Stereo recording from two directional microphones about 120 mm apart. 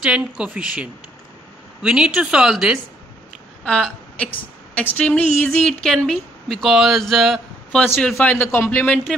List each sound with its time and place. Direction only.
0.0 s a woman's voice: 10° right (ahead or behind)
3.6 s a woman's voice: 10° left (ahead or behind)
8.4 s a man's voice: 20° left (ahead or behind)